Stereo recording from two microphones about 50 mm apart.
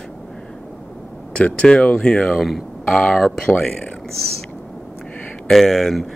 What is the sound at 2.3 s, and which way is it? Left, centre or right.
Speech, centre.